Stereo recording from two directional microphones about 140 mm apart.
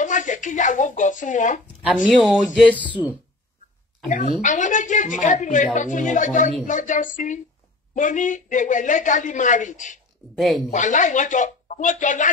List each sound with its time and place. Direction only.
0.0 s speech: 65° left (ahead or behind)
2.0 s speech: 5° right (ahead or behind)
4.4 s a woman's voice: 65° left (ahead or behind)
10.3 s speech: centre (ahead or behind)
10.7 s a woman's voice: 65° left (ahead or behind)